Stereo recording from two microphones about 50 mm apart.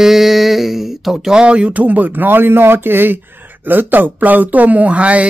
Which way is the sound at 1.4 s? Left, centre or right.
Right.